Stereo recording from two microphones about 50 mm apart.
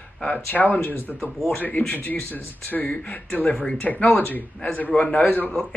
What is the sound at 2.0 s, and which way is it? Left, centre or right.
Speech, left.